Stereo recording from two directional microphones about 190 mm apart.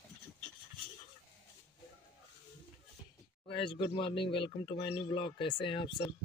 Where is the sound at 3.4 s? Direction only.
25° left (ahead or behind).